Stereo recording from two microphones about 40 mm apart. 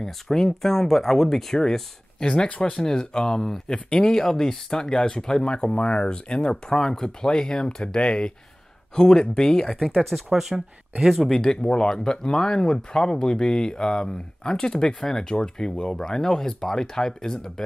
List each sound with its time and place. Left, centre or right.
0.0 s speech: centre
2.2 s speech: left
3.7 s speech: left
4.1 s speech: centre
6.5 s speech: centre
9.8 s speech: centre
11.3 s speech: centre